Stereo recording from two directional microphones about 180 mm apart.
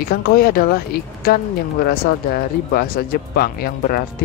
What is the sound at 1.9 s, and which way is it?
Speech, 55° left (ahead or behind).